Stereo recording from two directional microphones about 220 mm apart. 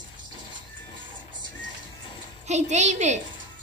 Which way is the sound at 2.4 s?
30° right (ahead or behind).